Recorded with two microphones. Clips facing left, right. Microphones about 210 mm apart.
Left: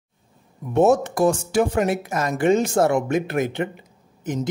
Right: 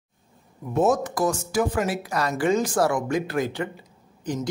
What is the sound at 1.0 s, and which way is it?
Speech, 25° left (ahead or behind).